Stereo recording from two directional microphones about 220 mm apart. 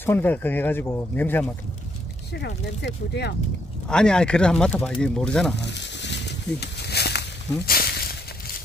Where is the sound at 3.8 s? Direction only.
5° left (ahead or behind).